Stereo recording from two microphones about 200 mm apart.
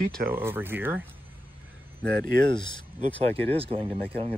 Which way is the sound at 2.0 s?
55° right (ahead or behind).